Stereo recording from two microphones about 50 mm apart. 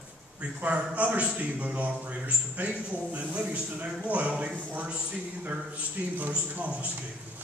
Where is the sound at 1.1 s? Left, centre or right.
Right.